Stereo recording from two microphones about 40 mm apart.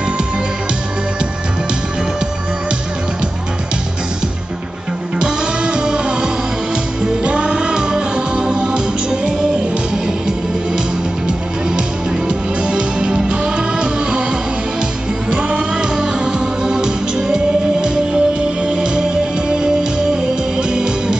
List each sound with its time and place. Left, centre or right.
5.2 s music: right
12.3 s music: centre
15.3 s music: right